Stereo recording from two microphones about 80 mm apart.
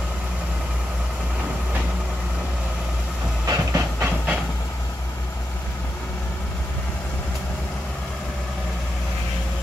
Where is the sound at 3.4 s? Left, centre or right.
Right.